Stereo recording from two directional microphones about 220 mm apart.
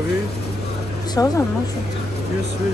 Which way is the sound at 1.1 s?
15° left (ahead or behind).